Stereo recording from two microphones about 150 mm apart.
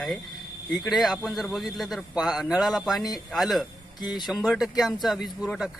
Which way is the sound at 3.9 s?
25° left (ahead or behind).